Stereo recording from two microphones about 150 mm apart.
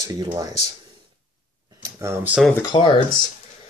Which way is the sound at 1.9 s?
15° right (ahead or behind).